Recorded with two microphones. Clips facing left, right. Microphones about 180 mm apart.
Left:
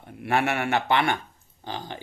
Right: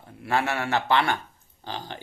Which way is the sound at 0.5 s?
20° left (ahead or behind).